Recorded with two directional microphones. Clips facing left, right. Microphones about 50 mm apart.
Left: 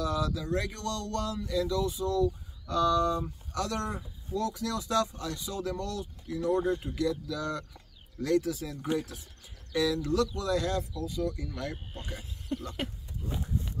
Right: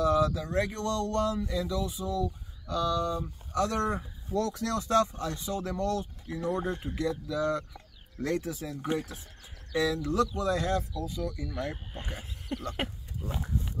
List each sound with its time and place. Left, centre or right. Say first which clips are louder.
0.0 s speech: right 5 dB; right; by 3.3 s centre
3.5 s speech: right 4 dB; right
3.9 s speech: right 4 dB; right
11.1 s speech: left 2 dB; centre; by 12.9 s right